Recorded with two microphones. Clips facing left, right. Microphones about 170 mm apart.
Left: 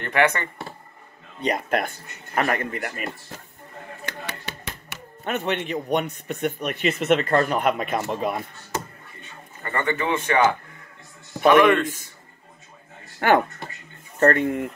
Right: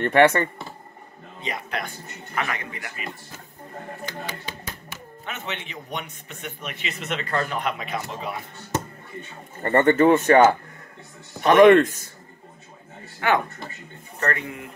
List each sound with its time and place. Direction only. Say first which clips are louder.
0.0 s a man's voice: right 5 dB; 35° right (ahead or behind)
1.5 s speech: left 7 dB; 50° left (ahead or behind)
4.0 s music: left 1 dB; 70° left (ahead or behind)
5.2 s speech: left 9 dB; 55° left (ahead or behind)
9.6 s speech: right 9 dB; 45° right (ahead or behind)
11.4 s a man's voice: right 3 dB; 40° right (ahead or behind)
13.2 s speech: left 4 dB; 55° left (ahead or behind)